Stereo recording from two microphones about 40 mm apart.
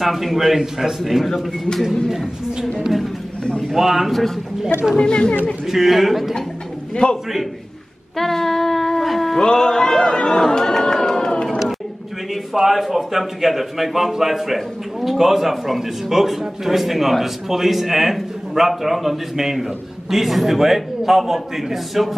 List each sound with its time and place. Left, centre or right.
0.0 s a man's voice: centre
3.7 s a woman's voice: centre
4.9 s speech: left
5.7 s a man's voice: centre
7.0 s speech: left
8.2 s shofar: centre
9.4 s a man's voice: centre
12.5 s a man's voice: centre